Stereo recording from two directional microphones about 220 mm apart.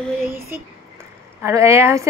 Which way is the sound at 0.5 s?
10° right (ahead or behind).